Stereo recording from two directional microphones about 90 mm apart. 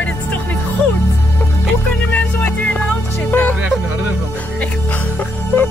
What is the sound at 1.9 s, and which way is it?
Music, 25° left (ahead or behind).